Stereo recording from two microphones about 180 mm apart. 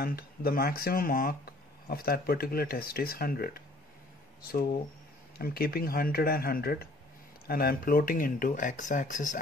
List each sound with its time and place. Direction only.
0.0 s speech: 55° left (ahead or behind)
5.4 s speech: 55° left (ahead or behind)